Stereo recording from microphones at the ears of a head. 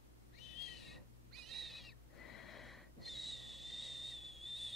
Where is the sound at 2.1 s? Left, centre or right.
Left.